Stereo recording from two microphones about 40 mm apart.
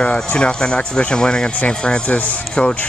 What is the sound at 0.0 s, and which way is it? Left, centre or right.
Speech, left.